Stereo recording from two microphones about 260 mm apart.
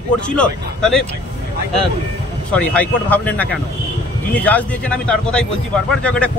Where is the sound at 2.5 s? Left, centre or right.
Centre.